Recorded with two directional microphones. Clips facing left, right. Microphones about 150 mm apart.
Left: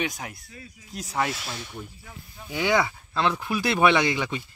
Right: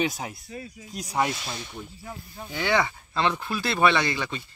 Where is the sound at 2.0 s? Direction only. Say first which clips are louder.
Right 6 dB; 40° right (ahead or behind).